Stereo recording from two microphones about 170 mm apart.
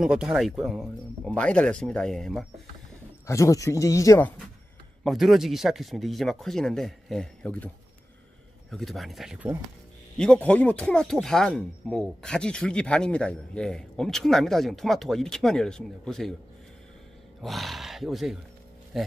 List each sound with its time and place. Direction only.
0.0 s speech: 5° right (ahead or behind)
3.3 s speech: 20° left (ahead or behind)
5.0 s speech: centre (ahead or behind)
17.4 s a man's voice: centre (ahead or behind)